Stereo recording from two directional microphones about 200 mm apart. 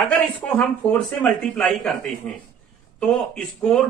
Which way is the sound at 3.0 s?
5° left (ahead or behind).